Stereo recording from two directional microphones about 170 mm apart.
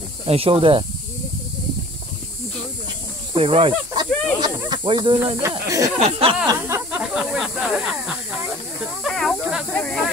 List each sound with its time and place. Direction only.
0.3 s speech: 35° right (ahead or behind)
3.3 s speech: 35° right (ahead or behind)
5.5 s speech: 20° right (ahead or behind)
5.9 s speech: 35° right (ahead or behind)
6.7 s snake: 10° right (ahead or behind)
9.8 s speech: 5° left (ahead or behind)